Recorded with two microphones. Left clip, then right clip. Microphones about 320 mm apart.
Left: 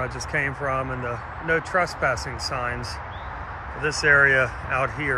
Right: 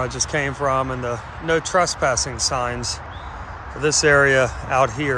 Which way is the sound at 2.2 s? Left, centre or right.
Right.